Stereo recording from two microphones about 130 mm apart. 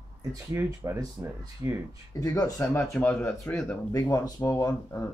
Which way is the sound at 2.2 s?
25° left (ahead or behind).